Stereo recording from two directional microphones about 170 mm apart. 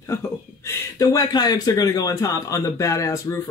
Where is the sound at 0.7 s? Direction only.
20° left (ahead or behind).